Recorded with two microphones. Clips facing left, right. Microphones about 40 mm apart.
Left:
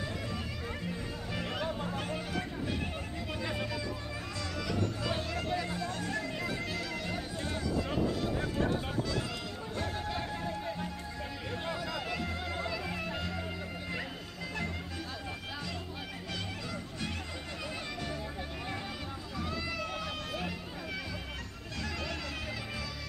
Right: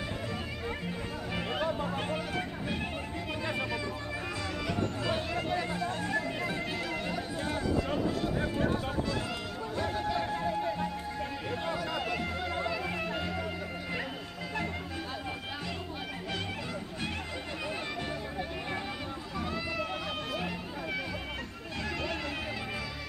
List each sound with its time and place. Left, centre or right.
1.3 s music: right
2.0 s a sound: right
5.3 s chatter: centre
5.8 s music: right
9.9 s music: centre
12.2 s music: centre